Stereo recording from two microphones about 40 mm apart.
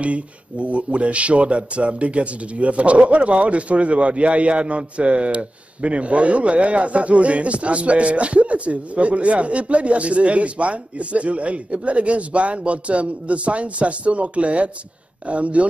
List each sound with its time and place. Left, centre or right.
0.0 s speech: right